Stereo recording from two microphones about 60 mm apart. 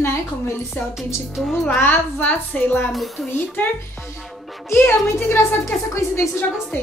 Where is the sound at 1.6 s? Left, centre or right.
Left.